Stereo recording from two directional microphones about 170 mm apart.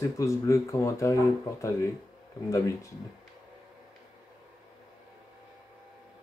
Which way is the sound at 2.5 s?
20° left (ahead or behind).